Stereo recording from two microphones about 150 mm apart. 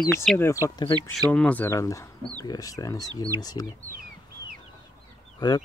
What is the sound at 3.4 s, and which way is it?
Speech, 25° left (ahead or behind).